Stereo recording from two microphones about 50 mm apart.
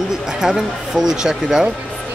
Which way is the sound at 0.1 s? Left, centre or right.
Centre.